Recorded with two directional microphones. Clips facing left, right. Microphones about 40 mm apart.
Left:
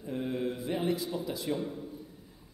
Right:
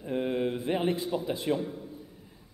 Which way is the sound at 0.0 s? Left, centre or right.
Right.